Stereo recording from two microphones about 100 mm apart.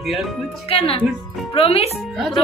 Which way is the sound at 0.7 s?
70° left (ahead or behind).